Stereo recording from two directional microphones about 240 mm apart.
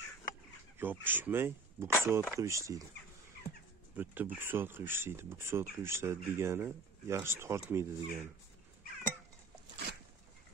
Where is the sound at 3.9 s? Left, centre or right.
Centre.